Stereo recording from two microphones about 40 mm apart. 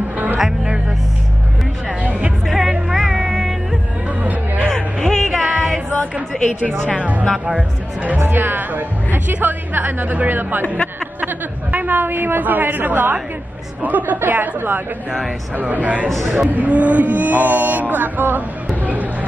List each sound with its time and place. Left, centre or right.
2.0 s music: right
2.4 s music: centre
4.2 s chatter: right
4.6 s a sound: centre
5.4 s music: right
6.3 s a woman's voice: centre
7.0 s speech: right
8.4 s speech: right
11.7 s speech: right
15.7 s speech: right